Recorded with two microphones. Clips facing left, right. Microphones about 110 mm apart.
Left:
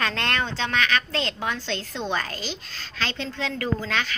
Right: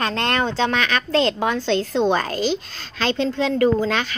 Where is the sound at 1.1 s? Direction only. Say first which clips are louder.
Right 9 dB; 60° right (ahead or behind).